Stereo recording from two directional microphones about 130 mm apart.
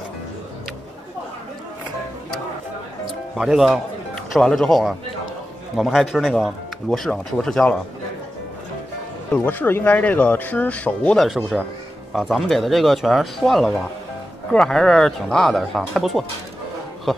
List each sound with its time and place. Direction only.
3.3 s speech: 5° right (ahead or behind)
9.3 s speech: 15° left (ahead or behind)